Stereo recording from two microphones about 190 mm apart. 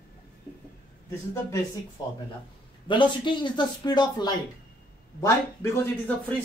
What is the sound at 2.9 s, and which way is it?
Speech, 25° left (ahead or behind).